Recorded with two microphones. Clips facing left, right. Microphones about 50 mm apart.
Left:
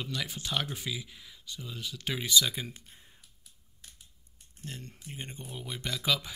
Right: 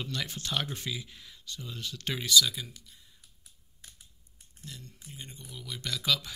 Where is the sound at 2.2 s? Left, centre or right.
Left.